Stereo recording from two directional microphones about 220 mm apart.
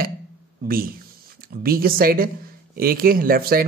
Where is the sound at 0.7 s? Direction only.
40° right (ahead or behind).